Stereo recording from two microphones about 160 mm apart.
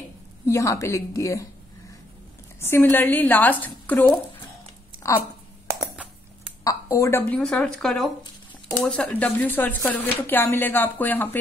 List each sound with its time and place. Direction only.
0.5 s a woman's voice: 20° left (ahead or behind)
2.6 s speech: 15° left (ahead or behind)
5.8 s a sound: 5° right (ahead or behind)
6.6 s speech: 20° left (ahead or behind)